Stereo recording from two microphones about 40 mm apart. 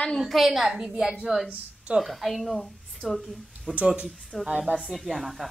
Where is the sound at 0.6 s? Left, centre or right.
Centre.